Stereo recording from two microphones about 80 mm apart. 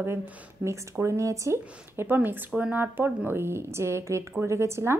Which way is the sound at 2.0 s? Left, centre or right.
Right.